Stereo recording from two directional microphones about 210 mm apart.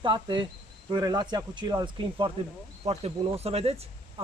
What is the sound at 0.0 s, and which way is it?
Speech, 20° right (ahead or behind).